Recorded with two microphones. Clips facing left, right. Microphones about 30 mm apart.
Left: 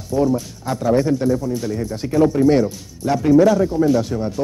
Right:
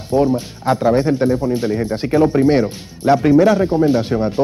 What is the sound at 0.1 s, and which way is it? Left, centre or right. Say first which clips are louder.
Speech: right 3 dB; right.